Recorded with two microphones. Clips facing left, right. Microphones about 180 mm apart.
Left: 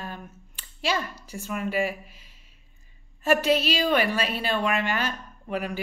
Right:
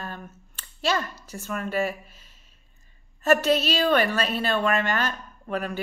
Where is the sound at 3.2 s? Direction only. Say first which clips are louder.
Right 1 dB; 10° left (ahead or behind).